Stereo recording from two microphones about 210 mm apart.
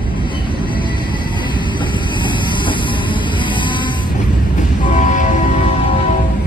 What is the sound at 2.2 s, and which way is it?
Vehicle, 20° left (ahead or behind).